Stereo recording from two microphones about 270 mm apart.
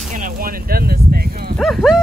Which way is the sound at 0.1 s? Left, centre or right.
Right.